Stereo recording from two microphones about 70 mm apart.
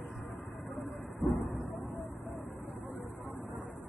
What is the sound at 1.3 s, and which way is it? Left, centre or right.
Dog, centre.